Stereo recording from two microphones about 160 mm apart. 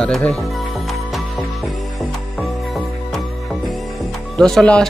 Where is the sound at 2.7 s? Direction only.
Centre (ahead or behind).